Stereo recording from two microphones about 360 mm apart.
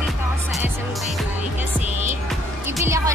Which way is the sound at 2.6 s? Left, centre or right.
Centre.